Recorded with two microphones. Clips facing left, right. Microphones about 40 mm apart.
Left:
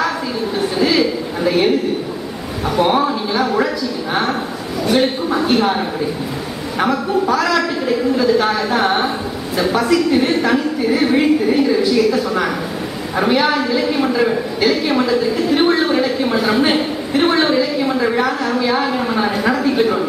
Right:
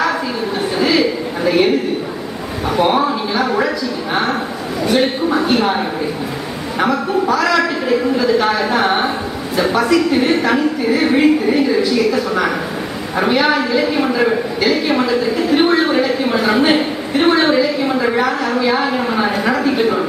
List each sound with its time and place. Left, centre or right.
0.6 s a sound: centre
4.8 s speech: centre
6.8 s a woman's voice: centre